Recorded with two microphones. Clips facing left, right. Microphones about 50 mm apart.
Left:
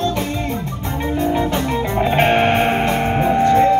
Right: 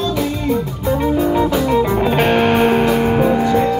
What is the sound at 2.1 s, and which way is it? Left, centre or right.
Music, left.